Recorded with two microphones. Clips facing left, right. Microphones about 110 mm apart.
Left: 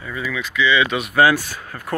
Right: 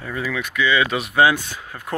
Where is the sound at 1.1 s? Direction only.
20° right (ahead or behind).